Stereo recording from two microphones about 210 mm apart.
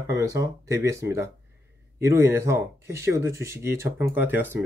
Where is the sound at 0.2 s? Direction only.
15° right (ahead or behind).